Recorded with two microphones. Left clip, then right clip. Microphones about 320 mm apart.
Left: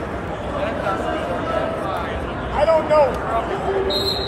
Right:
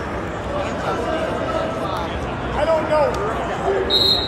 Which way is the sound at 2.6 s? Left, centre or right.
Left.